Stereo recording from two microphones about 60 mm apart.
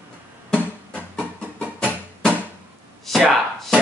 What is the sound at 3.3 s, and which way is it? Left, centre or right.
Chopping, centre.